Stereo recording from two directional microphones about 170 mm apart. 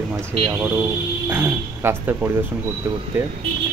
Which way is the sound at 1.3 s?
15° right (ahead or behind).